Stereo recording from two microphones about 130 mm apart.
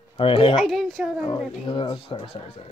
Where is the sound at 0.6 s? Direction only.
Centre (ahead or behind).